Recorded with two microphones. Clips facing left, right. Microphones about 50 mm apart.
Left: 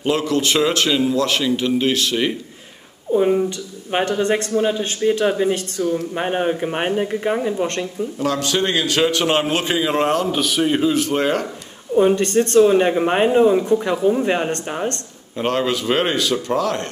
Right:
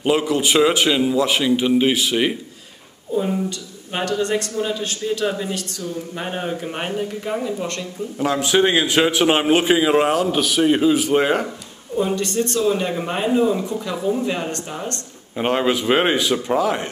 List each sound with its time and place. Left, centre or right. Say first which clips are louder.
0.0 s a man's voice: even; centre
3.2 s speech: left 5 dB; left
8.2 s a man's voice: right 3 dB; centre
12.2 s speech: left 7 dB; left
15.3 s a man's voice: right 1 dB; centre